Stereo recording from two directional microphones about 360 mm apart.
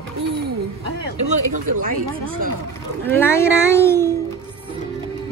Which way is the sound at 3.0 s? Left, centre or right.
Centre.